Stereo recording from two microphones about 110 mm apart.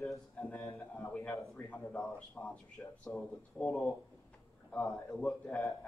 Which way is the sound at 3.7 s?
Centre (ahead or behind).